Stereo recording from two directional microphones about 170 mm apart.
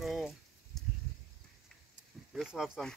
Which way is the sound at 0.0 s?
Centre (ahead or behind).